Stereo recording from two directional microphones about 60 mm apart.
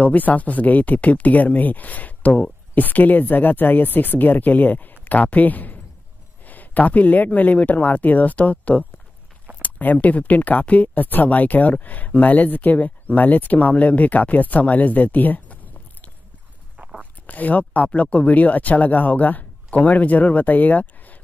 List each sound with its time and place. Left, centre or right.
0.0 s speech: left
17.3 s speech: left